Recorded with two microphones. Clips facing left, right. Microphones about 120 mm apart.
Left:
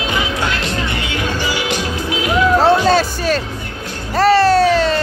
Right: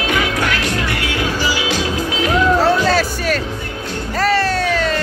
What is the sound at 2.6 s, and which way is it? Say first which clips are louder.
Music: left 2 dB; 25° left (ahead or behind).